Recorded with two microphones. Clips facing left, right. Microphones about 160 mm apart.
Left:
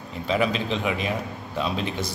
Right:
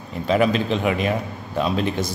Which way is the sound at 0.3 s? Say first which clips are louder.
Right 5 dB; 50° right (ahead or behind).